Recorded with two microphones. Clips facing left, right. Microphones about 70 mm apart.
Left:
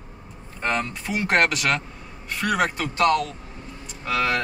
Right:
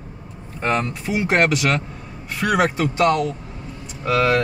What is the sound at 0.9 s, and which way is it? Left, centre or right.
Speech, centre.